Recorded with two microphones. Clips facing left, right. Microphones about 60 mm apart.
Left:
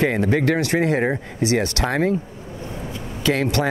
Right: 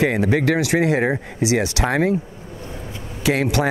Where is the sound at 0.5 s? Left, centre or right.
Centre.